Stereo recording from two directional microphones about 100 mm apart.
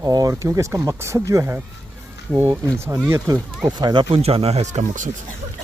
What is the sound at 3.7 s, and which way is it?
Speech, 45° right (ahead or behind).